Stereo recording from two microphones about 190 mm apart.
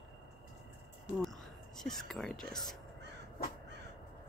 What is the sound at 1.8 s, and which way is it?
Speech, centre (ahead or behind).